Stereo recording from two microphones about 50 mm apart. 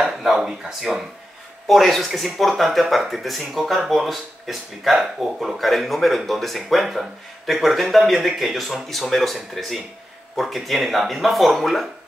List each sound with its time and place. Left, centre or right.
0.0 s speech: centre